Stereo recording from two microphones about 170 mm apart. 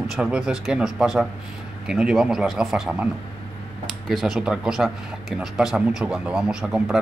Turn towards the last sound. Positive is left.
turn(degrees=-5)  # may be behind; listen again after turning